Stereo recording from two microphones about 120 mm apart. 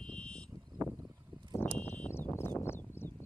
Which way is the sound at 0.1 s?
10° left (ahead or behind).